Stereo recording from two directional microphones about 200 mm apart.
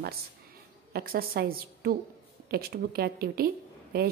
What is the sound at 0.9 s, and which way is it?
A woman's voice, 50° right (ahead or behind).